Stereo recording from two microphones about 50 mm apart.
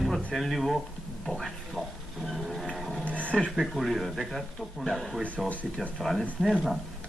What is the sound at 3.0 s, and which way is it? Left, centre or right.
Dog, left.